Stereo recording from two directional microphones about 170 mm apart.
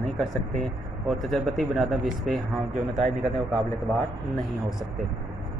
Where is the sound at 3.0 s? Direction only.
40° right (ahead or behind).